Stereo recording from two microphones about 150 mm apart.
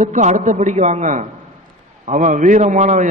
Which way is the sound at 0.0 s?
55° right (ahead or behind).